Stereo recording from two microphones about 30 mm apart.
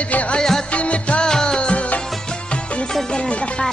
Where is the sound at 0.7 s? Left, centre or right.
Left.